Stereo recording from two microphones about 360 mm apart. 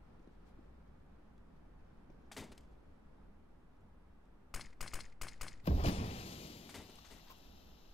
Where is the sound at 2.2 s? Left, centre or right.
Centre.